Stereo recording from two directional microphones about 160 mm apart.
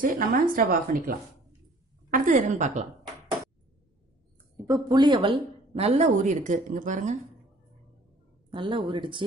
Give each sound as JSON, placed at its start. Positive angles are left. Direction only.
{"t": 0.0, "sound": "a woman's voice", "side_deg": -55}
{"t": 4.6, "sound": "speech", "side_deg": -25}
{"t": 8.5, "sound": "speech", "side_deg": -30}